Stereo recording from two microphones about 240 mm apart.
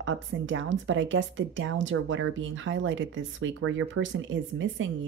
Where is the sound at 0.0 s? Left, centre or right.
Right.